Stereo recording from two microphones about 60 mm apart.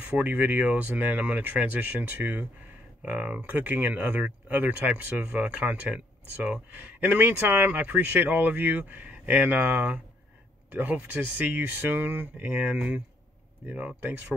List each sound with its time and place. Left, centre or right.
0.0 s speech: right